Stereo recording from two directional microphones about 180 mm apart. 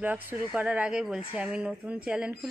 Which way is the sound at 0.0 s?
10° right (ahead or behind).